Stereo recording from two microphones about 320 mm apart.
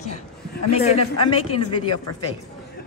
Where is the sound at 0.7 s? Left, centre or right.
Centre.